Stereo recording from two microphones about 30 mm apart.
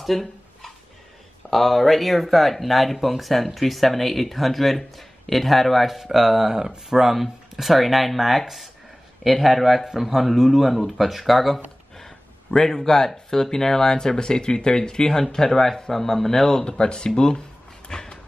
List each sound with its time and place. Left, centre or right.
0.0 s dog: centre
1.5 s speech: centre
5.9 s speech: centre
12.5 s speech: centre
16.6 s speech: left
17.8 s cupboard open or close: left